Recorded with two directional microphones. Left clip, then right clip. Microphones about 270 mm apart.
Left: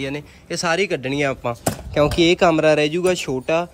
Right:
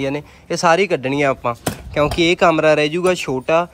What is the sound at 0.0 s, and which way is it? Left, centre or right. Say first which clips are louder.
Speech: right 5 dB; centre.